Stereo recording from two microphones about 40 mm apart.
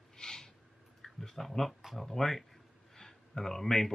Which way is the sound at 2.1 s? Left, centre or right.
Centre.